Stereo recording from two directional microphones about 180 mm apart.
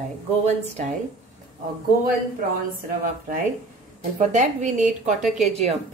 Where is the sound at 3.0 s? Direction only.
50° right (ahead or behind).